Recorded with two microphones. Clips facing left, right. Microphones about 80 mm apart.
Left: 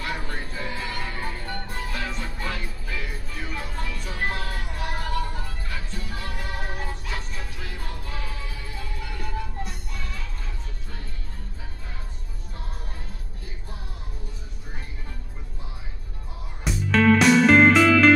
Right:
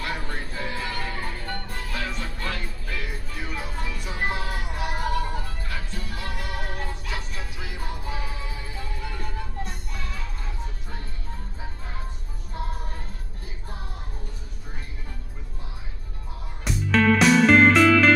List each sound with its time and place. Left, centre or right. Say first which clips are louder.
0.0 s music: even; centre
2.0 s music: right 3 dB; centre
6.7 s music: even; centre
7.1 s music: even; centre
16.6 s music: left 1 dB; centre